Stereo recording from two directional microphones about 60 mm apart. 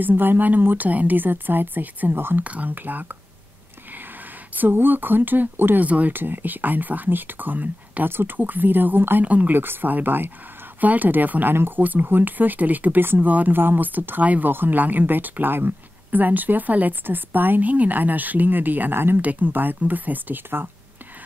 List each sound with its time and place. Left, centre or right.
0.0 s speech: right
4.6 s speech: right
9.2 s speech: right